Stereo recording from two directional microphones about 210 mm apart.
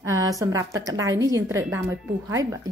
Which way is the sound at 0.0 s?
15° right (ahead or behind).